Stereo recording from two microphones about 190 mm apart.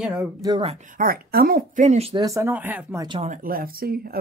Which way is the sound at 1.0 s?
50° right (ahead or behind).